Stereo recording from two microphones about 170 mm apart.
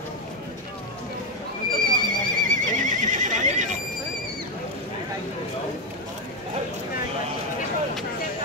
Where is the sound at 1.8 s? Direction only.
55° right (ahead or behind).